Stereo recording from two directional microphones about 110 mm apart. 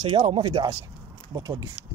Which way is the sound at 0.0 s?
50° right (ahead or behind).